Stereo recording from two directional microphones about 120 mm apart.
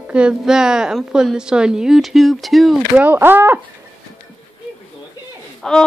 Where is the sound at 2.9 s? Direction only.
15° right (ahead or behind).